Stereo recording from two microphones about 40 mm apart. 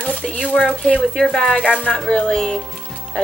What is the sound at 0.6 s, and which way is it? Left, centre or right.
Speech, left.